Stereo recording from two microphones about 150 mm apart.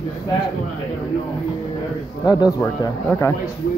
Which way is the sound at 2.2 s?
25° left (ahead or behind).